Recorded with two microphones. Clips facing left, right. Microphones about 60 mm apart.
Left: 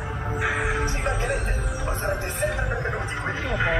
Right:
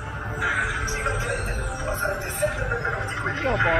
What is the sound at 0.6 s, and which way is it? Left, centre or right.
Speech, left.